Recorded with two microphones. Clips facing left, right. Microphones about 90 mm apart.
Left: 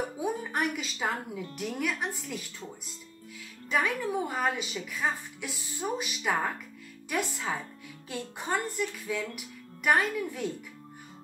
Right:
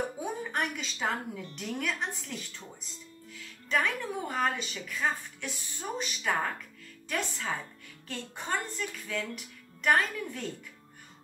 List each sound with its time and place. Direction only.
0.2 s a woman's voice: 5° left (ahead or behind)
3.7 s a woman's voice: 5° left (ahead or behind)